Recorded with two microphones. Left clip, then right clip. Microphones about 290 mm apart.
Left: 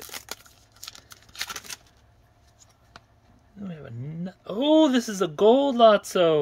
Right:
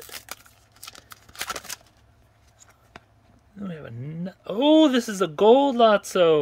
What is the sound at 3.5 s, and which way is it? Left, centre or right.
Speech, centre.